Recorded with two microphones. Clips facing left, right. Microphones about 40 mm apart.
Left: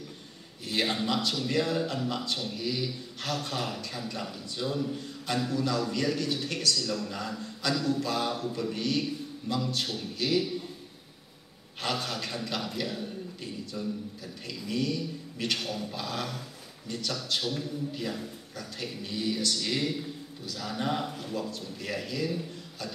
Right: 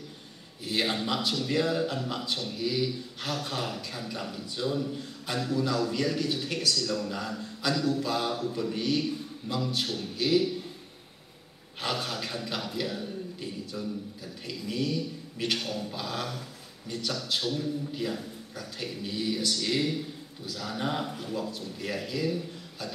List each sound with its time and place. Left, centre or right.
0.7 s a man's voice: centre
11.8 s a man's voice: centre